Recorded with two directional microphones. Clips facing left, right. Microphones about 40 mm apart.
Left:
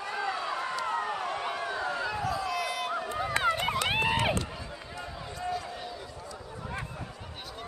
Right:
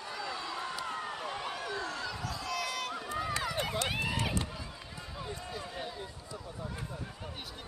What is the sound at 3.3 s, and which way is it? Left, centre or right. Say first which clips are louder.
Run: left 9 dB; left.